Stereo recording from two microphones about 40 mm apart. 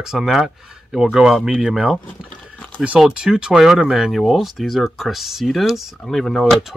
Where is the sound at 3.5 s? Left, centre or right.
Centre.